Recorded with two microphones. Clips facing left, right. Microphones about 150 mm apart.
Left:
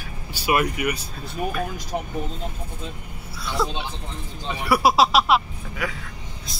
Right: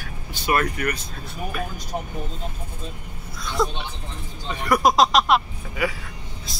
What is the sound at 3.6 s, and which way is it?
Speech, 5° left (ahead or behind).